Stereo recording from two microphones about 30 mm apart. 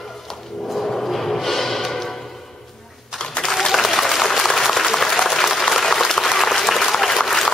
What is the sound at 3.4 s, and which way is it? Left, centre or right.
Applause, centre.